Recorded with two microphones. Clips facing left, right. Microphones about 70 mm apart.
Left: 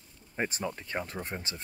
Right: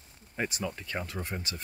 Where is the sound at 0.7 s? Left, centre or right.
Left.